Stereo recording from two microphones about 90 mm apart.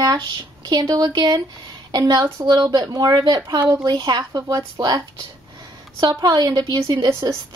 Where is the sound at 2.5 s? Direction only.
50° right (ahead or behind).